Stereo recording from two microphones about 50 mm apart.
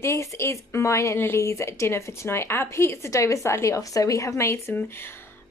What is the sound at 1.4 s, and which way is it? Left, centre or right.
Speech, left.